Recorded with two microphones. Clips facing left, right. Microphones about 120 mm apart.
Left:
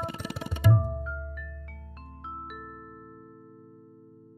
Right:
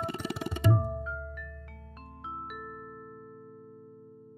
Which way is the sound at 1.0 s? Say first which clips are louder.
Even; centre (ahead or behind).